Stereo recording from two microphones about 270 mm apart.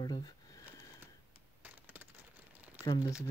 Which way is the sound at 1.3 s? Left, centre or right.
Centre.